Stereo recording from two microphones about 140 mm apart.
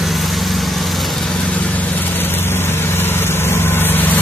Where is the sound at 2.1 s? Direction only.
15° left (ahead or behind).